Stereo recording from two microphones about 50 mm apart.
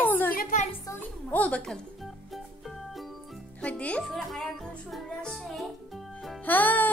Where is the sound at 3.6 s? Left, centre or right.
Left.